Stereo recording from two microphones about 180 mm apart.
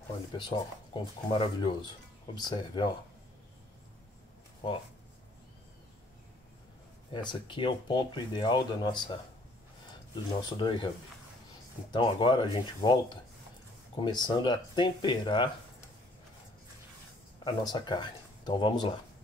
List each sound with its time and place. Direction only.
0.3 s speech: 25° left (ahead or behind)
4.6 s speech: 25° left (ahead or behind)
7.1 s speech: 25° left (ahead or behind)
10.6 s speech: 25° left (ahead or behind)
11.9 s speech: 25° left (ahead or behind)
17.5 s speech: 25° left (ahead or behind)